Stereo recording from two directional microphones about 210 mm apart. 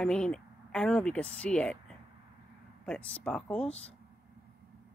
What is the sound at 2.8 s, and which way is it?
Speech, 5° left (ahead or behind).